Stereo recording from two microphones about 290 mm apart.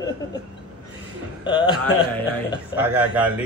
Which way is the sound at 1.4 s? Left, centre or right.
Centre.